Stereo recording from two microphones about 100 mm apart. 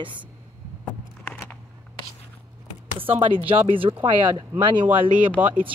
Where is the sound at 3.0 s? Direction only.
65° right (ahead or behind).